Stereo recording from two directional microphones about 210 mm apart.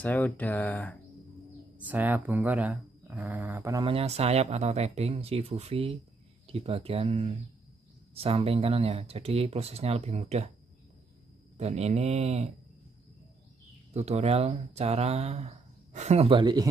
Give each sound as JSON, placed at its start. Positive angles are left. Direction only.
{"t": 0.0, "sound": "speech", "side_deg": 10}
{"t": 1.8, "sound": "speech", "side_deg": -10}
{"t": 11.5, "sound": "speech", "side_deg": -30}
{"t": 13.9, "sound": "speech", "side_deg": -30}